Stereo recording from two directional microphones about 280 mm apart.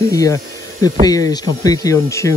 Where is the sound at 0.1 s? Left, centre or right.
Centre.